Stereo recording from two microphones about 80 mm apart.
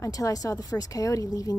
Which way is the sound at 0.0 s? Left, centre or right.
Left.